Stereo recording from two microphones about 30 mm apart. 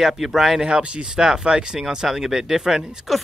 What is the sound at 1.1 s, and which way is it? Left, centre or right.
Speech, right.